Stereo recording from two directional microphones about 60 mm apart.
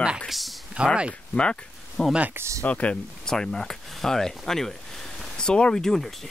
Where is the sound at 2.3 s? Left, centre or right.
Right.